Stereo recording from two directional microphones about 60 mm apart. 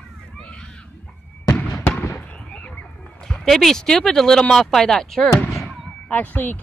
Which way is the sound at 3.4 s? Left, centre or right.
Centre.